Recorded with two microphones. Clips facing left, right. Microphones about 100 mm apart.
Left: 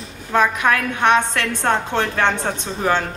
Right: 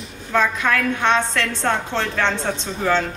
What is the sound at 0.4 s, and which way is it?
A woman's voice, 15° left (ahead or behind).